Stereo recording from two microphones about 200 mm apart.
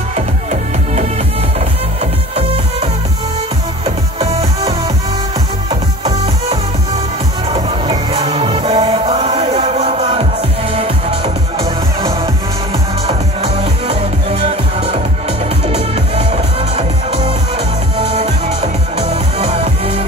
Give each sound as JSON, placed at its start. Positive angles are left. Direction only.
{"t": 0.1, "sound": "music", "side_deg": -35}
{"t": 3.8, "sound": "music", "side_deg": -30}